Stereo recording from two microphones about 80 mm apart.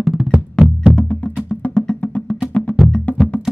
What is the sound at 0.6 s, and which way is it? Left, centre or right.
Music, centre.